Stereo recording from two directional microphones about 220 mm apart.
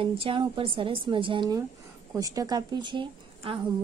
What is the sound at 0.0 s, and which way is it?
A woman's voice, 25° right (ahead or behind).